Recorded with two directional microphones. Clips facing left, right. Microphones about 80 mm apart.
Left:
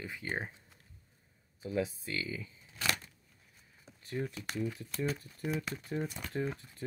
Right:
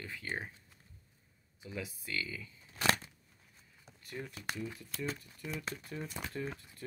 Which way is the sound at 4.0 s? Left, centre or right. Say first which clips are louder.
Left 7 dB; left.